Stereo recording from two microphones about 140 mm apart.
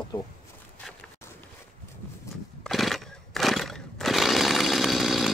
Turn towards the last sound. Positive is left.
turn(degrees=0)  # may be behind; listen again after turning